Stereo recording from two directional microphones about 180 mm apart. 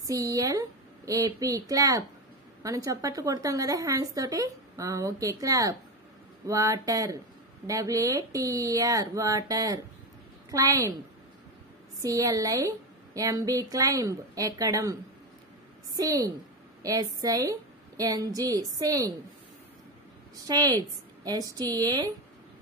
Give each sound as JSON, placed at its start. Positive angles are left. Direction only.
{"t": 0.0, "sound": "a woman's voice", "side_deg": -20}
{"t": 12.0, "sound": "a woman's voice", "side_deg": -20}
{"t": 16.0, "sound": "a woman's voice", "side_deg": -20}
{"t": 20.4, "sound": "a woman's voice", "side_deg": -20}